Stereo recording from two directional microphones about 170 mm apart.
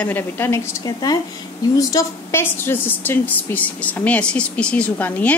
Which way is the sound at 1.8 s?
20° left (ahead or behind).